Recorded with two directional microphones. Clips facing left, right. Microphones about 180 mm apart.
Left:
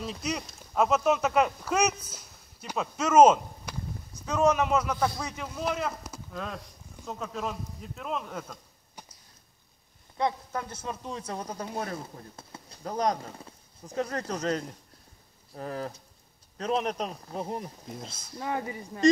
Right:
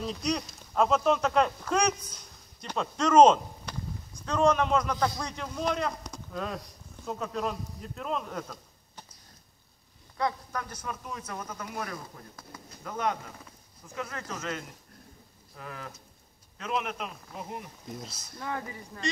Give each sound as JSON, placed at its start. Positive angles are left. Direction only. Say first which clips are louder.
{"t": 0.0, "sound": "a man's voice", "louder": "right 2 dB", "side_deg": 5}
{"t": 10.1, "sound": "a man's voice", "louder": "left 2 dB", "side_deg": 25}
{"t": 17.8, "sound": "a man's voice", "louder": "even", "side_deg": 0}
{"t": 18.4, "sound": "a man's voice", "louder": "left 4 dB", "side_deg": 20}